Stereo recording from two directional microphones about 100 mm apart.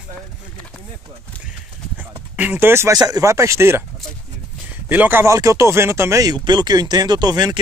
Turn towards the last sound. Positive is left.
turn(degrees=-45)  # may be behind; listen again after turning